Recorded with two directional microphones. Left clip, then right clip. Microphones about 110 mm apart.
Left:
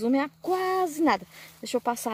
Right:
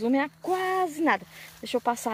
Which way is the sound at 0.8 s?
55° left (ahead or behind).